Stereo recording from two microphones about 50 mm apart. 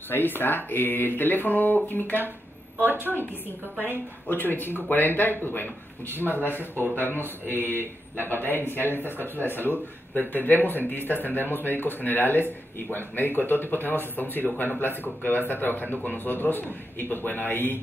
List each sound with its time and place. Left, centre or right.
0.1 s speech: left
2.8 s a woman's voice: right
3.8 s speech: left
6.5 s speech: right
8.5 s speech: left